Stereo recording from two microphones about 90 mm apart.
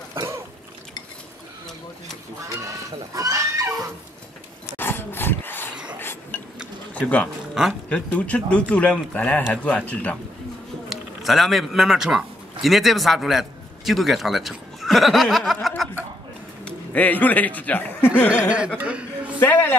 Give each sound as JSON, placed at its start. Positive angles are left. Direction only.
{"t": 0.1, "sound": "cough", "side_deg": -30}
{"t": 3.2, "sound": "pig", "side_deg": -35}
{"t": 4.7, "sound": "a sound", "side_deg": 25}
{"t": 6.9, "sound": "speech", "side_deg": 15}
{"t": 7.6, "sound": "speech", "side_deg": -5}
{"t": 7.9, "sound": "speech", "side_deg": 15}
{"t": 10.9, "sound": "a man's voice", "side_deg": 0}
{"t": 16.6, "sound": "speech", "side_deg": 15}
{"t": 18.8, "sound": "a sound", "side_deg": -15}
{"t": 19.4, "sound": "a man's voice", "side_deg": 20}